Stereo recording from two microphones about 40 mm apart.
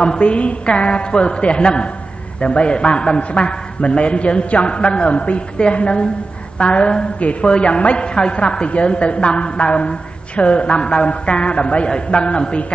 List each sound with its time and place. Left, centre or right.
0.0 s a woman's voice: left